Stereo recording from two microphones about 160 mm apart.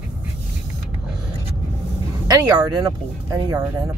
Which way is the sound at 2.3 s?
25° right (ahead or behind).